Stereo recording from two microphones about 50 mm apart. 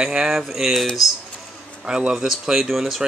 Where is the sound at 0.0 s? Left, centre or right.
Centre.